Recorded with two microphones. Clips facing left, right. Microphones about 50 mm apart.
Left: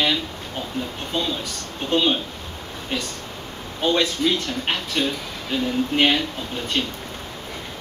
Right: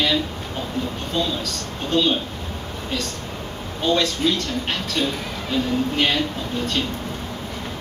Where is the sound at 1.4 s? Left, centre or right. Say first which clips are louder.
Right 2 dB; centre.